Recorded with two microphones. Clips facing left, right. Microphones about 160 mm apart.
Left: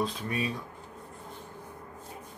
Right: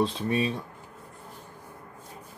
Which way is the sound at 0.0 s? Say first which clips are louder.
Right 5 dB; 30° right (ahead or behind).